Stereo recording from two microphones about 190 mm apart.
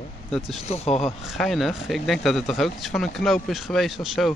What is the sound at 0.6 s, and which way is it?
Speech, 35° left (ahead or behind).